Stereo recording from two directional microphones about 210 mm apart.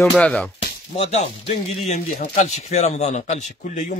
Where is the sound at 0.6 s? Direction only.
30° left (ahead or behind).